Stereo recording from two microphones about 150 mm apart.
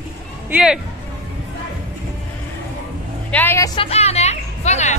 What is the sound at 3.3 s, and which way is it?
Speech, 15° left (ahead or behind).